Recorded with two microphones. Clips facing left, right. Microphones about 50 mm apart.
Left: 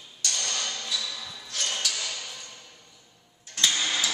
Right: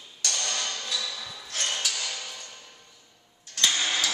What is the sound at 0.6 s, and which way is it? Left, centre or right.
Music, centre.